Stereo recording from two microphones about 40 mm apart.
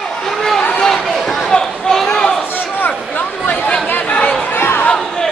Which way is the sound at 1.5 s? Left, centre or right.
Left.